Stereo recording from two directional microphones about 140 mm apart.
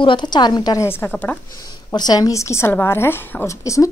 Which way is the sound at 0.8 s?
15° left (ahead or behind).